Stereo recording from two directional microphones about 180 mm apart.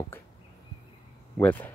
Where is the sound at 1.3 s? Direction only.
10° left (ahead or behind).